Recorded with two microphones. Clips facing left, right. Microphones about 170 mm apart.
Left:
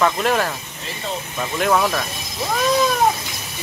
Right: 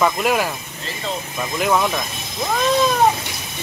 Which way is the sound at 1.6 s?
5° right (ahead or behind).